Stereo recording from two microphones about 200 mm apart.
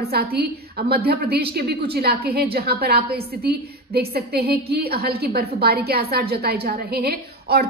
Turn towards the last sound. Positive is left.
turn(degrees=-50)  # may be behind; listen again after turning